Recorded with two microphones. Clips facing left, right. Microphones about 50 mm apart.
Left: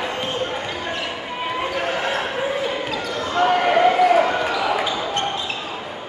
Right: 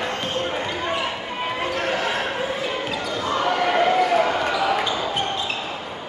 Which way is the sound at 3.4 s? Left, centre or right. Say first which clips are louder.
Left 5 dB; centre.